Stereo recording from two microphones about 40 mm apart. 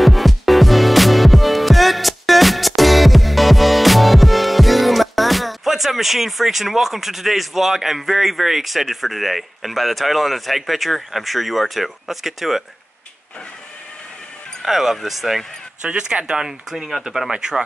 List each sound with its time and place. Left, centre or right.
0.0 s music: centre
14.6 s speech: centre
15.8 s speech: right
16.4 s speech: centre